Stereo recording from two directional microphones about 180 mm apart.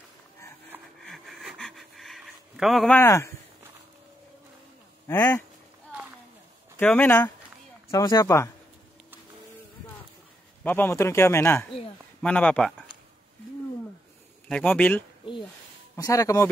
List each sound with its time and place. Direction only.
1.0 s pant: centre (ahead or behind)
3.0 s a man's voice: 15° left (ahead or behind)
5.0 s speech: 10° left (ahead or behind)
5.9 s a sound: 10° right (ahead or behind)
6.8 s a man's voice: 10° left (ahead or behind)
7.9 s speech: 20° left (ahead or behind)
10.6 s a man's voice: 10° left (ahead or behind)
14.5 s a man's voice: 5° left (ahead or behind)